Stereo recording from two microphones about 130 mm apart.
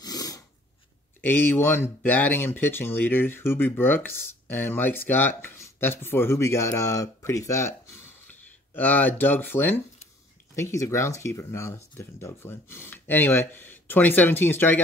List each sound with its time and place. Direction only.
0.0 s dog: 30° left (ahead or behind)
1.2 s speech: 15° left (ahead or behind)